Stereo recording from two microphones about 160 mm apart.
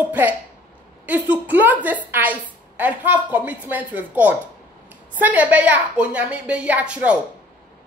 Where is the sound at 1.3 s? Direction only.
10° right (ahead or behind).